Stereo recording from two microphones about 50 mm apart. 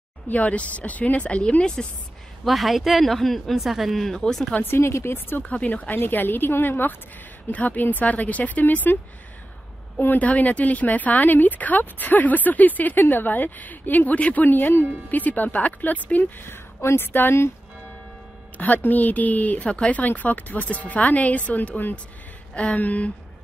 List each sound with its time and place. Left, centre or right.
0.3 s speech: left
2.4 s speech: centre
4.6 s speech: left
5.4 s speech: left
7.5 s speech: left
10.0 s speech: left
16.4 s speech: left
18.6 s speech: left
22.5 s speech: left